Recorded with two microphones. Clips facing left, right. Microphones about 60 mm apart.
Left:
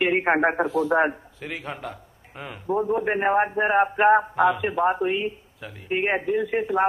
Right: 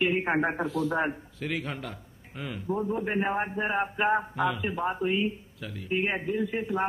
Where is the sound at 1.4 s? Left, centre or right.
Centre.